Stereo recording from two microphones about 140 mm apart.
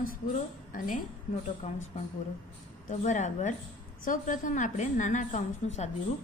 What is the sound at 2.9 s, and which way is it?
A woman's voice, 60° left (ahead or behind).